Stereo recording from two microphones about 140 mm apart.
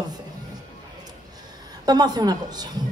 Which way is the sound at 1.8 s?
30° right (ahead or behind).